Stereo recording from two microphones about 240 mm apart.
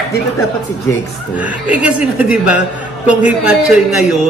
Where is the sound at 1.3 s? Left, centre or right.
Centre.